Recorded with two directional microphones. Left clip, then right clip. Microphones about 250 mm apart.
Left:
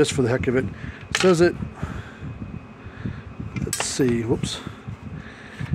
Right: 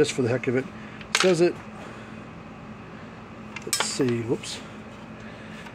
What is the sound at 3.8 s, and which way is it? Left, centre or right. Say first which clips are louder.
Speech: left 6 dB; left.